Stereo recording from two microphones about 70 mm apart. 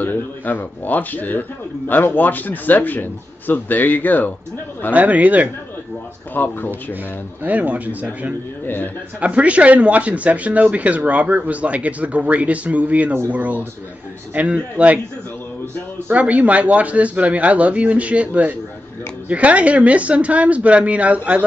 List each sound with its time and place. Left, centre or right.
0.0 s a man's voice: left
4.9 s speech: right
6.3 s a man's voice: left
7.4 s speech: right
8.6 s a man's voice: left
9.2 s speech: centre
16.1 s speech: right